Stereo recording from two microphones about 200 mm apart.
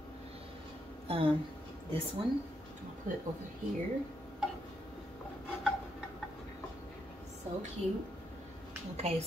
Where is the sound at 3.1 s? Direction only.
40° right (ahead or behind).